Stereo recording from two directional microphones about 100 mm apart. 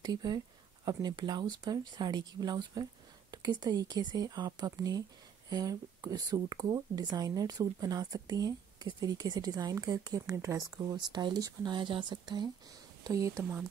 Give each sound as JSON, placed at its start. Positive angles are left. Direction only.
{"t": 0.0, "sound": "speech", "side_deg": -45}
{"t": 11.0, "sound": "speech", "side_deg": -45}
{"t": 13.0, "sound": "speech", "side_deg": -35}
{"t": 13.4, "sound": "speech", "side_deg": -20}